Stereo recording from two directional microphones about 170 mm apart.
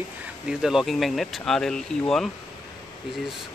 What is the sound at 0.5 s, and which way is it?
Speech, 5° right (ahead or behind).